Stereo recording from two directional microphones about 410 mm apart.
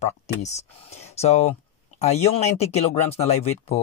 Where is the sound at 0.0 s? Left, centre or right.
Centre.